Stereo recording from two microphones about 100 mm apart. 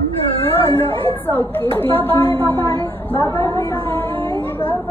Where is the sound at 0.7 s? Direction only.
20° left (ahead or behind).